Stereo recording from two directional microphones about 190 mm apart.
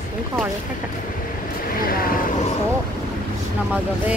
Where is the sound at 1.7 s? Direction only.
50° left (ahead or behind).